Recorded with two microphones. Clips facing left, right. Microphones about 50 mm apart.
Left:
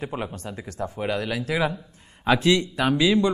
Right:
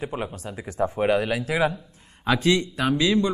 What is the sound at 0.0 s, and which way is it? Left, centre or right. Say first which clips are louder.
Speech: even; centre.